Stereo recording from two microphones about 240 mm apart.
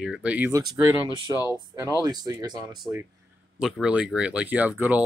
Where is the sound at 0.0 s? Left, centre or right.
Centre.